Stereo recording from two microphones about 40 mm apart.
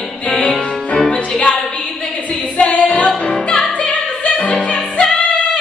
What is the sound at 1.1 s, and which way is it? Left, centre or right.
Music, left.